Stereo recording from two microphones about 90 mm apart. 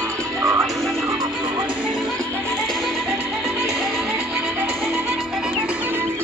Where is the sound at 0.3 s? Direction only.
35° right (ahead or behind).